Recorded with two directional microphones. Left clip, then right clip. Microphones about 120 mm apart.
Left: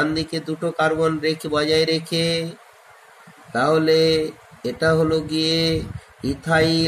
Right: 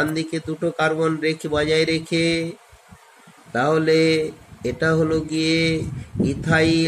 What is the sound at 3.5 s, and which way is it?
Mantra, 45° right (ahead or behind).